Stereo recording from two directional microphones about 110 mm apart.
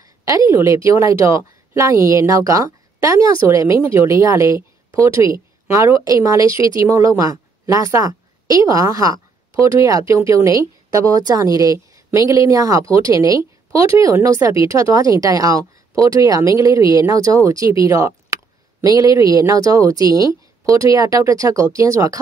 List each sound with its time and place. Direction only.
0.0 s a woman's voice: 30° right (ahead or behind)